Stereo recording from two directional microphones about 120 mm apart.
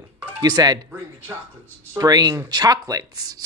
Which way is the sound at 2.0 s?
35° right (ahead or behind).